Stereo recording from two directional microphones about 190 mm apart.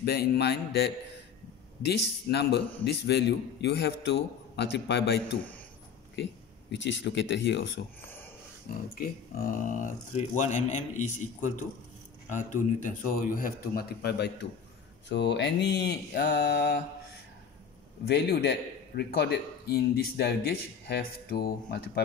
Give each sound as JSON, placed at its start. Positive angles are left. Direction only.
{"t": 0.0, "sound": "a man's voice", "side_deg": 55}
{"t": 1.9, "sound": "a man's voice", "side_deg": 60}
{"t": 6.7, "sound": "speech", "side_deg": 70}
{"t": 8.9, "sound": "a man's voice", "side_deg": 50}
{"t": 18.0, "sound": "a man's voice", "side_deg": 60}